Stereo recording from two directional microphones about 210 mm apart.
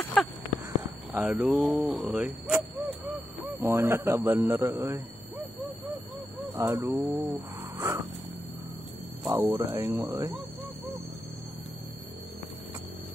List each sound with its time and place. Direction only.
0.0 s a sound: 5° left (ahead or behind)
1.1 s speech: 5° right (ahead or behind)
3.5 s speech: 15° right (ahead or behind)
6.5 s speech: 10° right (ahead or behind)
9.3 s speech: 15° right (ahead or behind)